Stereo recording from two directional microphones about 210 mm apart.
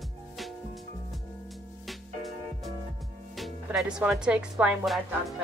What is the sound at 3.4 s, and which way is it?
Speech, centre (ahead or behind).